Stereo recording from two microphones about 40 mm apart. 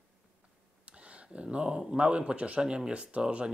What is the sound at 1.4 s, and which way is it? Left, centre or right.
Speech, right.